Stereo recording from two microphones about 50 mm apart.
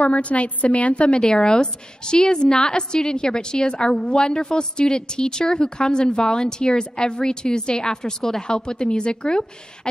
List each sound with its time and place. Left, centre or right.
0.0 s a woman's voice: left